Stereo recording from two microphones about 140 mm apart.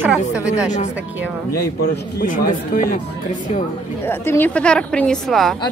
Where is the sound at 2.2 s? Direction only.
80° left.